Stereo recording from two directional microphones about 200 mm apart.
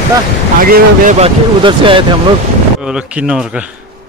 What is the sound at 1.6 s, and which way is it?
Speech, 25° right (ahead or behind).